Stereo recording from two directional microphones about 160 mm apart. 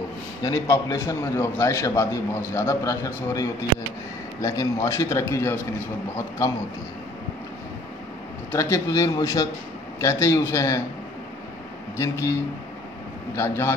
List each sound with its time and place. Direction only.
0.4 s a man's voice: 20° left (ahead or behind)
8.5 s a man's voice: 15° left (ahead or behind)
12.0 s a man's voice: 20° left (ahead or behind)